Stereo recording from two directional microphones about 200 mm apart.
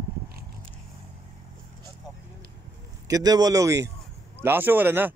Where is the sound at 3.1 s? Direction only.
20° right (ahead or behind).